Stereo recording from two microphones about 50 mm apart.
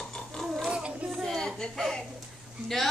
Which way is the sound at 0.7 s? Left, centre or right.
Right.